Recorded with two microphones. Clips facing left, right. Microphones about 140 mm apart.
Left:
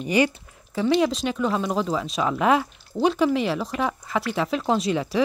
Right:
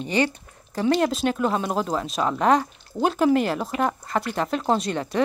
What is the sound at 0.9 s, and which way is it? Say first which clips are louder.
Speech: left 2 dB; centre (ahead or behind).